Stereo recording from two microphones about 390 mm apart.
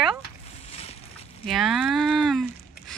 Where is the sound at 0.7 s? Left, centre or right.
Centre.